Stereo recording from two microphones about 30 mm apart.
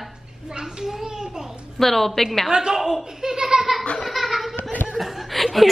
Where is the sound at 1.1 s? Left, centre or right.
Right.